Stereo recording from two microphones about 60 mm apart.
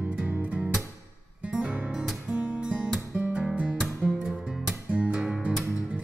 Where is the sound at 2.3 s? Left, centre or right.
Right.